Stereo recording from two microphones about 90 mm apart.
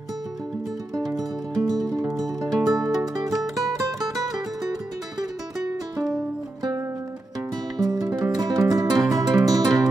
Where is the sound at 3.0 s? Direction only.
45° right (ahead or behind).